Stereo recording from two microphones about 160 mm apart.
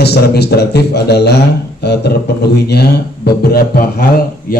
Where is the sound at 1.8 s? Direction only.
90° left.